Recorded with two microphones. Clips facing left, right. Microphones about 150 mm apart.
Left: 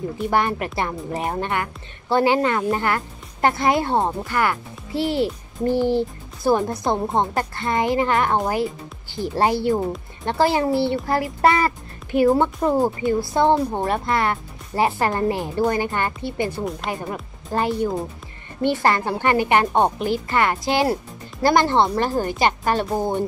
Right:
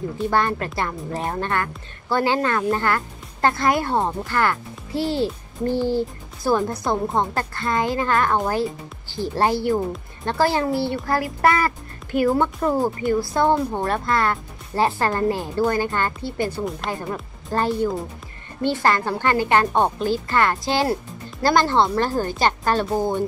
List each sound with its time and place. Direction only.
0.3 s a woman's voice: 15° left (ahead or behind)
9.4 s a woman's voice: 20° left (ahead or behind)
22.8 s speech: centre (ahead or behind)